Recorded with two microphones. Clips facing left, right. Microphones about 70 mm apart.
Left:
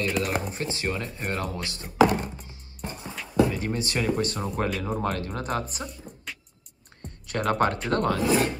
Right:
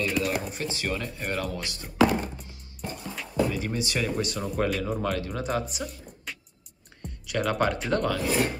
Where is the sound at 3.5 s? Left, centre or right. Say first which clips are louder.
Left 1 dB; left.